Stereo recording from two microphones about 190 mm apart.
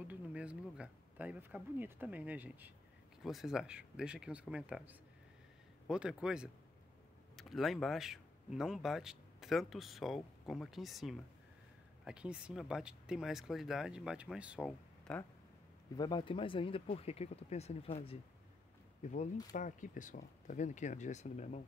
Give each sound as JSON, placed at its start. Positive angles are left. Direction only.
{"t": 0.1, "sound": "speech", "side_deg": -5}
{"t": 14.7, "sound": "speech", "side_deg": 5}
{"t": 16.0, "sound": "speech", "side_deg": 20}
{"t": 19.5, "sound": "speech", "side_deg": 45}